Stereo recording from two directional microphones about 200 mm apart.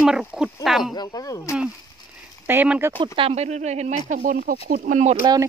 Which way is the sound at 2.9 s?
25° right (ahead or behind).